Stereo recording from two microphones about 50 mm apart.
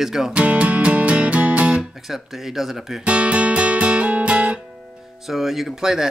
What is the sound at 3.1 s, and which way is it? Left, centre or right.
Guitar, right.